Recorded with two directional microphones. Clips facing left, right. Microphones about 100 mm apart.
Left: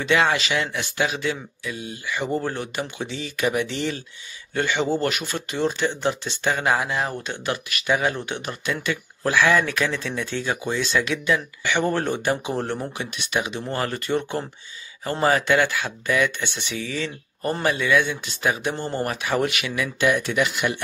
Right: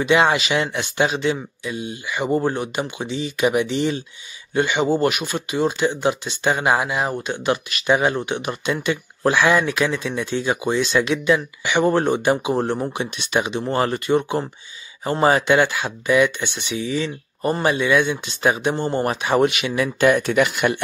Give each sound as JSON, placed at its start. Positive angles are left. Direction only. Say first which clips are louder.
{"t": 0.0, "sound": "speech", "louder": "right 4 dB", "side_deg": -15}
{"t": 20.1, "sound": "speech", "louder": "right 4 dB", "side_deg": -45}